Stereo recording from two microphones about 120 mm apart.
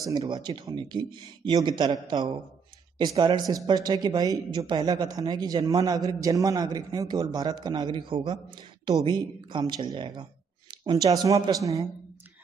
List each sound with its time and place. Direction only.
0.0 s speech: 30° right (ahead or behind)